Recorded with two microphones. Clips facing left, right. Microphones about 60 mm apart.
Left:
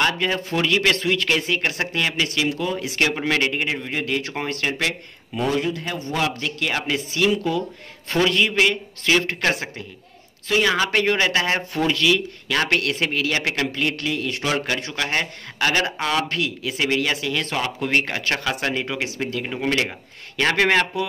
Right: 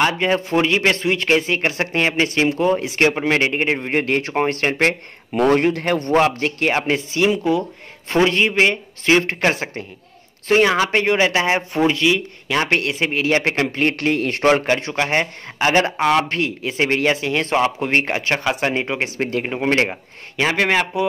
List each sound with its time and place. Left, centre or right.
0.0 s speech: right
5.3 s a man's voice: right
6.1 s speech: right
20.3 s a man's voice: centre